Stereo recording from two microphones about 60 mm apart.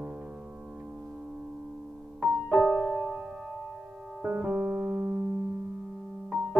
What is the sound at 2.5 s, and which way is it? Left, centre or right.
Music, centre.